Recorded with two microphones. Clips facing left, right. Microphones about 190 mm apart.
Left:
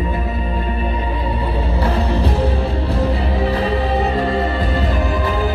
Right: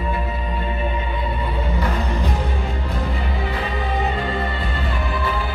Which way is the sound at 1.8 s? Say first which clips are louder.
Left 7 dB; 30° left (ahead or behind).